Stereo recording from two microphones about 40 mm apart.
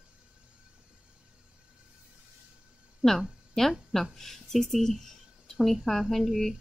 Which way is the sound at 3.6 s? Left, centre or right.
Centre.